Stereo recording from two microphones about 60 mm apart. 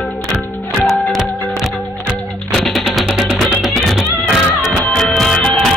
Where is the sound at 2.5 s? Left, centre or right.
Centre.